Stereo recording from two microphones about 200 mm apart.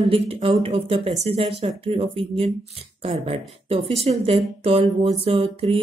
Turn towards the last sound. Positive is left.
turn(degrees=-30)  # may be behind; listen again after turning